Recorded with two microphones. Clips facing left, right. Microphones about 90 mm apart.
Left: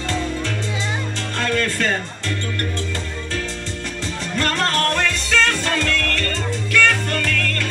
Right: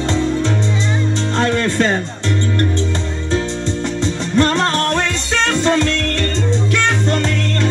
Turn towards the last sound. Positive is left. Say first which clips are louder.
# right 5 dB
turn(degrees=-25)  # may be behind; listen again after turning